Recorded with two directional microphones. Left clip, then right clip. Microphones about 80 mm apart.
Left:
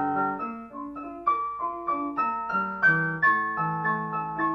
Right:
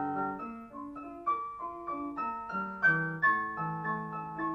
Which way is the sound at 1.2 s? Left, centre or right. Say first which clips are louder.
Left 8 dB; right.